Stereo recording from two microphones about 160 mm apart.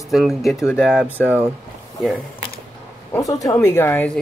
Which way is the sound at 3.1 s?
20° left (ahead or behind).